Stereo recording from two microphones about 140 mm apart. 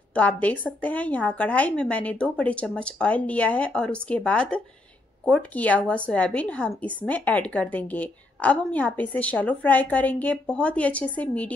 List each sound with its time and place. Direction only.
0.1 s a woman's voice: 10° left (ahead or behind)